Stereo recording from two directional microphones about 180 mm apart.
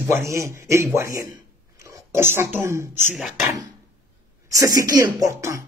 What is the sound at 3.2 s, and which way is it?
Speech, centre (ahead or behind).